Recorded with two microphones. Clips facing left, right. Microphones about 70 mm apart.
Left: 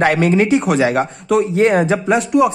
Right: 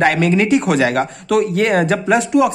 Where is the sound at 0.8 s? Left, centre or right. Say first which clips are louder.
Left 1 dB; centre.